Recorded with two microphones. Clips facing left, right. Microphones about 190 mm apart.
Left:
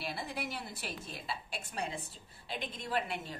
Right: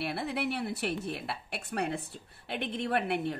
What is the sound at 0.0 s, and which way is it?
Speech, 65° right (ahead or behind).